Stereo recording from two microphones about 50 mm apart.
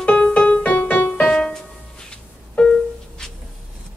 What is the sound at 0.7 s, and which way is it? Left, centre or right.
Music, left.